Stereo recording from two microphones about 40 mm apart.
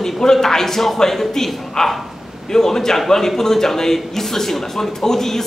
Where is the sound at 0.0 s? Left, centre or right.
Centre.